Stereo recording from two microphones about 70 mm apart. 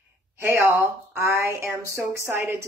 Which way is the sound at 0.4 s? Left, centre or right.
Right.